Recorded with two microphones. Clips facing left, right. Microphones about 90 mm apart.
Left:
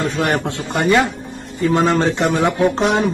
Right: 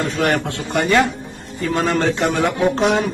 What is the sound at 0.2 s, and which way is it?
A man's voice, 20° left (ahead or behind).